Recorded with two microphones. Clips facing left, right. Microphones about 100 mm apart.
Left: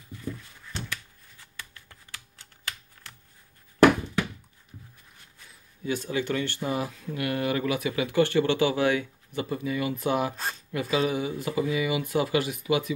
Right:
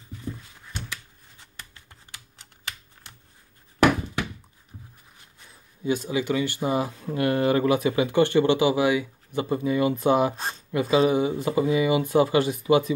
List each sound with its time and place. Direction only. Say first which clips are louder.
1.4 s typing: left 1 dB; 25° right (ahead or behind)
4.7 s a sound: right 2 dB; 35° right (ahead or behind)
5.9 s speech: right 3 dB; 15° right (ahead or behind)
6.7 s speech: right 4 dB; 25° right (ahead or behind); by 9.1 s 10° right (ahead or behind)
9.3 s speech: right 5 dB; 25° right (ahead or behind)